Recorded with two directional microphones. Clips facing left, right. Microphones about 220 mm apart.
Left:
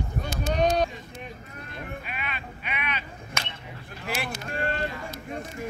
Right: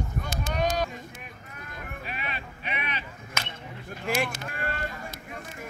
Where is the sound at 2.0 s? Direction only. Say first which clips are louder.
Even; 40° right (ahead or behind).